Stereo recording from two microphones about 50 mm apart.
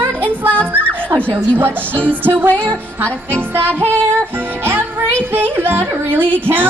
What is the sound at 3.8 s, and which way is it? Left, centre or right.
Music, right.